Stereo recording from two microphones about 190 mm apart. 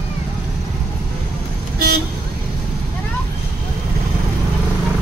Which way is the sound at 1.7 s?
55° right (ahead or behind).